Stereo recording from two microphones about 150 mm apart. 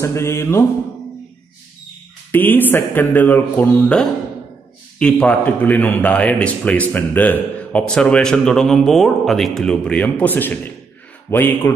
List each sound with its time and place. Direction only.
0.0 s a man's voice: 20° left (ahead or behind)
2.3 s a man's voice: 10° left (ahead or behind)